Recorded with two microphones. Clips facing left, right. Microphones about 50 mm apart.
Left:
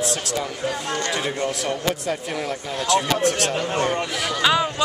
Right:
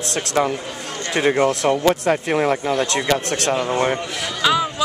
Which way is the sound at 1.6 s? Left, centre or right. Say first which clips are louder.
Right 7 dB; right.